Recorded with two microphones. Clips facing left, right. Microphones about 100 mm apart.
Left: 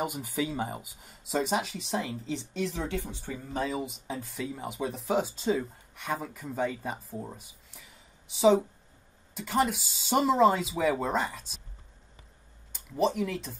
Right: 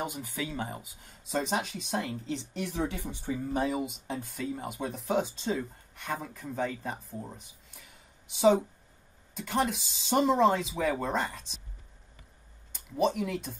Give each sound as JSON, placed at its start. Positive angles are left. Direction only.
{"t": 0.0, "sound": "speech", "side_deg": 5}
{"t": 3.6, "sound": "speech", "side_deg": 0}
{"t": 12.7, "sound": "speech", "side_deg": 0}